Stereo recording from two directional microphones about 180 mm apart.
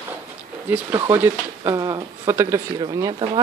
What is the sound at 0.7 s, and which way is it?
Speech, 10° right (ahead or behind).